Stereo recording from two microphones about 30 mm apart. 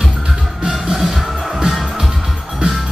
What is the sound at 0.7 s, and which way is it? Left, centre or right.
Music, centre.